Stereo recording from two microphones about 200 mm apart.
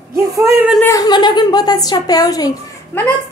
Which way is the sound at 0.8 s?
15° left (ahead or behind).